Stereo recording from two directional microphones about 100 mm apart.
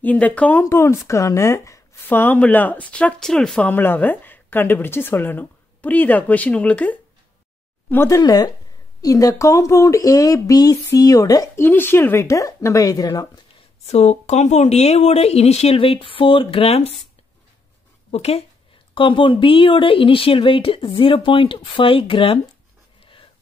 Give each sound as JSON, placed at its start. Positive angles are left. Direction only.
{"t": 0.0, "sound": "a woman's voice", "side_deg": 15}
{"t": 2.0, "sound": "speech", "side_deg": 20}
{"t": 3.6, "sound": "a woman's voice", "side_deg": 20}
{"t": 8.2, "sound": "speech", "side_deg": 40}
{"t": 11.5, "sound": "speech", "side_deg": 20}
{"t": 13.8, "sound": "speech", "side_deg": 90}
{"t": 18.1, "sound": "speech", "side_deg": 90}
{"t": 18.9, "sound": "speech", "side_deg": 55}